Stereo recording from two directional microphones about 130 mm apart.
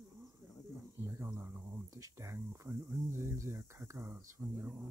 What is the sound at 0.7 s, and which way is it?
Snake, 20° right (ahead or behind).